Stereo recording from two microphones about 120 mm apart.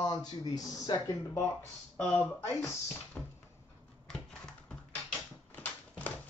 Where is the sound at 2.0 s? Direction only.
15° left (ahead or behind).